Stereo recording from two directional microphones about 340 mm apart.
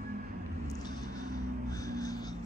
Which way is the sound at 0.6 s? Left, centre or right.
Centre.